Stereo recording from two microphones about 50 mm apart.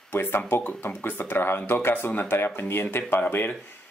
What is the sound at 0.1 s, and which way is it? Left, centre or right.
Speech, left.